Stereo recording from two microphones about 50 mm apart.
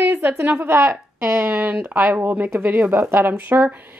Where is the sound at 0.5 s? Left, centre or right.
Right.